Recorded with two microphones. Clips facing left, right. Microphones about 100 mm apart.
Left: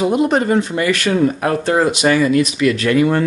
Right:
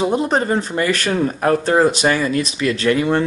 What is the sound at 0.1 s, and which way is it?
Speech, 35° right (ahead or behind).